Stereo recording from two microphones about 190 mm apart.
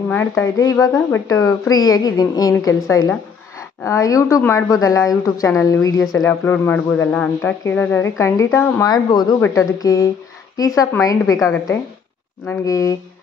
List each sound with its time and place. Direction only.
0.1 s speech: 10° left (ahead or behind)